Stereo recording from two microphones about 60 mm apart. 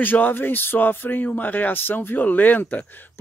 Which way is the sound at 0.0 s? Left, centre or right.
Left.